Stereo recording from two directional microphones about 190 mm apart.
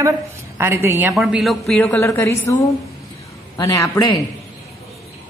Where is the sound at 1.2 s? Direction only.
Centre (ahead or behind).